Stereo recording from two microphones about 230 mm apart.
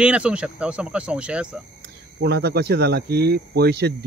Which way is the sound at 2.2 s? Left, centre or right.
Right.